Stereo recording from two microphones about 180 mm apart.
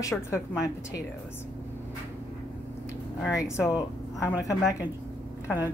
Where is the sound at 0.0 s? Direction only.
15° left (ahead or behind).